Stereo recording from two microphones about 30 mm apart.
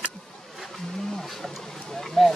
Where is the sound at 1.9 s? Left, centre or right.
Centre.